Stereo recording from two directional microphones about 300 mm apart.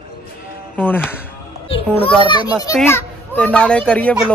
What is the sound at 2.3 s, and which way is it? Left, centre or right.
A child's voice, centre.